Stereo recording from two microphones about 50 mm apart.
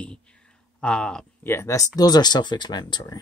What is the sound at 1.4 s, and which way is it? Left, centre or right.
Speech, left.